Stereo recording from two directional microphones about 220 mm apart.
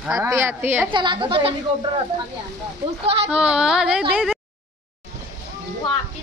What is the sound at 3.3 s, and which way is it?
Music, 5° right (ahead or behind).